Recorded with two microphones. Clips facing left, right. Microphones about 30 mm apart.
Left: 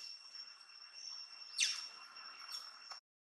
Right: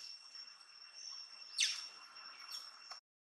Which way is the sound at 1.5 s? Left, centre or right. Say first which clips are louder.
Right 1 dB; centre.